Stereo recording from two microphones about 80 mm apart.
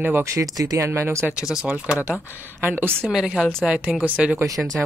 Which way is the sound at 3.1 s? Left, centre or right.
Centre.